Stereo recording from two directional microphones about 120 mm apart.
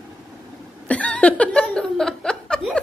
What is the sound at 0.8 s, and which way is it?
Chuckle, 10° left (ahead or behind).